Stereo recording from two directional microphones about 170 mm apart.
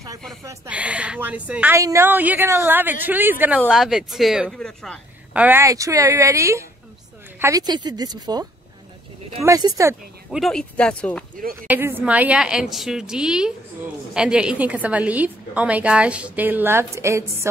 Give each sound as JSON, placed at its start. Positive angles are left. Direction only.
{"t": 0.7, "sound": "a woman's voice", "side_deg": -10}
{"t": 5.3, "sound": "a woman's voice", "side_deg": -10}
{"t": 10.3, "sound": "a woman's voice", "side_deg": 5}
{"t": 11.6, "sound": "a woman's voice", "side_deg": -10}